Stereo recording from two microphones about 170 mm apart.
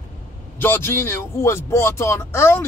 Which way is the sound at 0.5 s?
10° left (ahead or behind).